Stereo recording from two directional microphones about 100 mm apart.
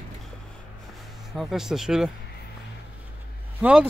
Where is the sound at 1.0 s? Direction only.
Centre (ahead or behind).